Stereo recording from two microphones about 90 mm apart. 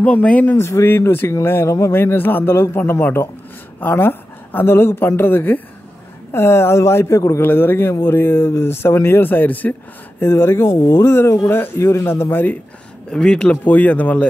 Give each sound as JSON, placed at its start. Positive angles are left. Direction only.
{"t": 0.0, "sound": "speech", "side_deg": 15}
{"t": 7.4, "sound": "speech", "side_deg": 25}
{"t": 13.1, "sound": "speech", "side_deg": 10}